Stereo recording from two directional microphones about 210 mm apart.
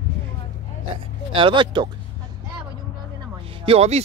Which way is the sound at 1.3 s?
25° right (ahead or behind).